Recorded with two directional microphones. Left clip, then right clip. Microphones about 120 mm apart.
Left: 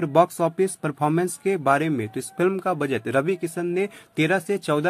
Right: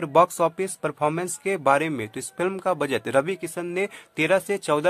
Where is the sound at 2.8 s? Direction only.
40° right (ahead or behind).